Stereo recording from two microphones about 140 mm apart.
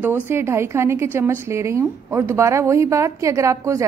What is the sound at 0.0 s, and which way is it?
A woman's voice, 15° right (ahead or behind).